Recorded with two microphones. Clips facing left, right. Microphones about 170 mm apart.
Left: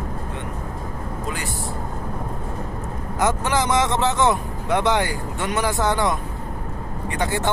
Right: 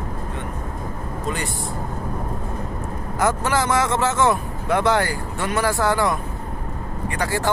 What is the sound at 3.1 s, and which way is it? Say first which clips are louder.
Speech: even; 20° left (ahead or behind).